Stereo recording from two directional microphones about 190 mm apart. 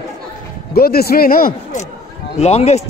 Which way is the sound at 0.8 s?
55° left (ahead or behind).